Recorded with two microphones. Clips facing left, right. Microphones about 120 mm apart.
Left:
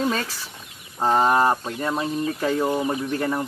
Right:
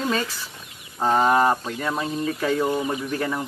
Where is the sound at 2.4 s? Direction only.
10° left (ahead or behind).